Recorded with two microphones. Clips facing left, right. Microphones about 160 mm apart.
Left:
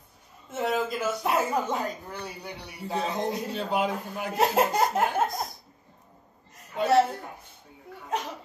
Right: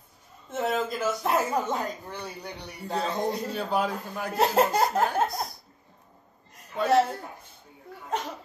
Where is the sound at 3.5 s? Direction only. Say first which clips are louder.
Even; 20° left (ahead or behind).